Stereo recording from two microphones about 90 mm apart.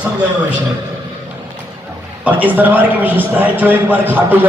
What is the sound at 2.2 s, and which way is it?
A man's voice, 20° right (ahead or behind).